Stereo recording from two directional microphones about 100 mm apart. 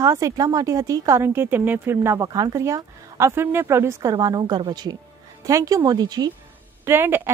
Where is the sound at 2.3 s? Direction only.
40° right (ahead or behind).